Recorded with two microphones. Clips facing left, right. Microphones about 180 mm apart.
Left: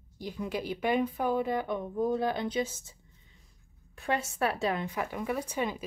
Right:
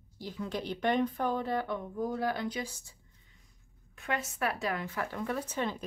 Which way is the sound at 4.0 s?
30° left (ahead or behind).